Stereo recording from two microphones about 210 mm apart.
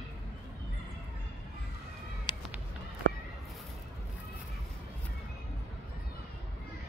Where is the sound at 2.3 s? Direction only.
20° left (ahead or behind).